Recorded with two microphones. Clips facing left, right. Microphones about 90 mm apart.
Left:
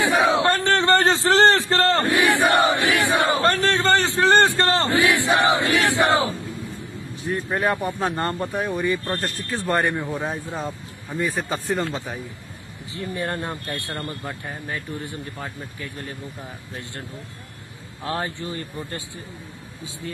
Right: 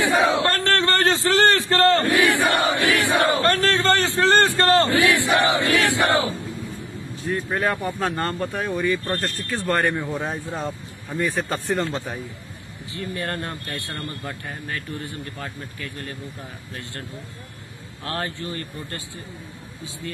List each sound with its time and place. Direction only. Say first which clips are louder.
0.0 s a sound: left 1 dB; 20° left (ahead or behind)
7.5 s a man's voice: left 2 dB; 15° left (ahead or behind)
9.9 s speech: even; centre (ahead or behind)
12.9 s a man's voice: left 1 dB; 20° left (ahead or behind)
18.0 s a man's voice: left 1 dB; 10° left (ahead or behind)